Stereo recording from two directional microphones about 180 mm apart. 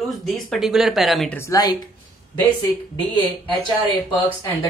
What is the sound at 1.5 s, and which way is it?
Speech, 20° left (ahead or behind).